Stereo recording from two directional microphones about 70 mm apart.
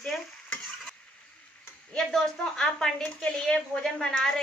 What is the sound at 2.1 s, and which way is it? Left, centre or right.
A woman's voice, centre.